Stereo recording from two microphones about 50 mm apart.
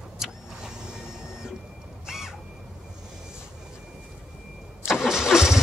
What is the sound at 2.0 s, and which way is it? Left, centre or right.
Squawk, centre.